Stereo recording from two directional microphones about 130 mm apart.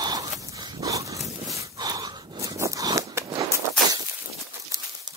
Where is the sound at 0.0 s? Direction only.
30° right (ahead or behind).